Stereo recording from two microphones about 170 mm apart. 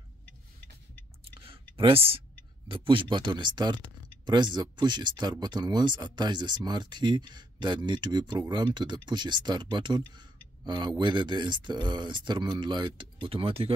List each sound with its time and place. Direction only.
1.3 s clicking: 30° right (ahead or behind)
1.8 s speech: 35° right (ahead or behind)